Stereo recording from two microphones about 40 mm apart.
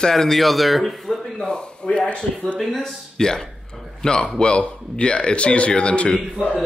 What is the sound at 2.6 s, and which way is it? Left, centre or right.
A man's voice, centre.